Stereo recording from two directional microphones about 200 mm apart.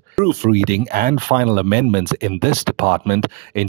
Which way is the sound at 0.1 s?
40° right (ahead or behind).